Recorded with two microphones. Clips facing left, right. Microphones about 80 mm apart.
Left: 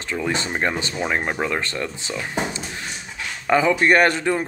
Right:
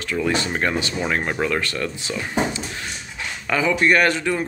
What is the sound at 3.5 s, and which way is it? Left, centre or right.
Speech, left.